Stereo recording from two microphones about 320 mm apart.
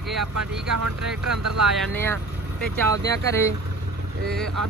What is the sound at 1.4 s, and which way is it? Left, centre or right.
Speech, right.